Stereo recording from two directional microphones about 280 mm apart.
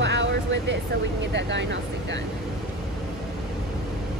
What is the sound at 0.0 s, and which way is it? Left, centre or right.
Vehicle, right.